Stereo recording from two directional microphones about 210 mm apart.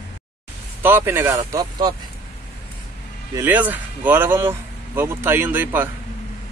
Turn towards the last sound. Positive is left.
turn(degrees=-10)  # may be behind; listen again after turning